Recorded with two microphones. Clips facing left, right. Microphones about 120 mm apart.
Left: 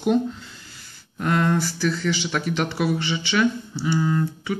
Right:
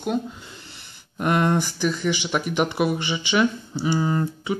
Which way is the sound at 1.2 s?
20° right (ahead or behind).